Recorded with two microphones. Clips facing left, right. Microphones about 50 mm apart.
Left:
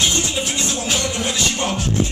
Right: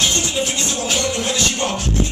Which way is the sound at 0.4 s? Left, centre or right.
Centre.